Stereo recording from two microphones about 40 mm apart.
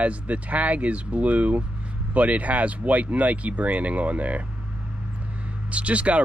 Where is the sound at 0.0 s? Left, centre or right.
Right.